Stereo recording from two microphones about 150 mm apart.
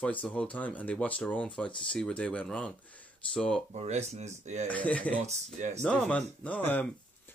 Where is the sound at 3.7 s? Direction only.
50° right (ahead or behind).